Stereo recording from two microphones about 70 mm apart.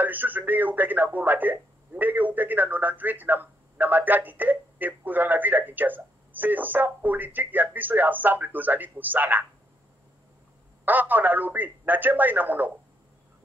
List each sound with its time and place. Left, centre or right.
0.0 s speech: right
10.9 s speech: right